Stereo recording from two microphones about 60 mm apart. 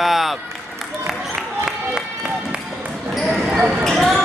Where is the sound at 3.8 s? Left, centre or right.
Centre.